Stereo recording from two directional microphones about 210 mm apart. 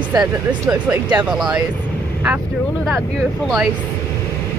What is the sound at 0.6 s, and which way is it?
Speech, 5° right (ahead or behind).